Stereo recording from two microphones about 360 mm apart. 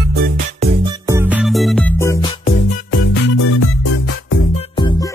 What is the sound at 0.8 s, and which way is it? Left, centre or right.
Music, centre.